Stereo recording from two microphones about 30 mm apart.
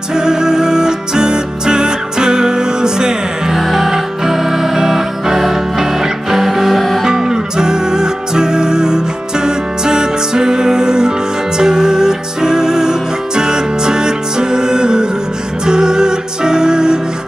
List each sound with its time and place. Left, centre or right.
0.1 s music: right
3.5 s music: centre
7.1 s music: centre